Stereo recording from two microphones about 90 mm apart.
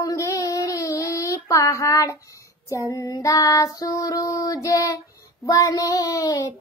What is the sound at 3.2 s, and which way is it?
Child singing, 40° left (ahead or behind).